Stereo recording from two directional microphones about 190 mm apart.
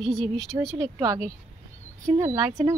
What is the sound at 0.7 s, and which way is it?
Speech, 15° right (ahead or behind).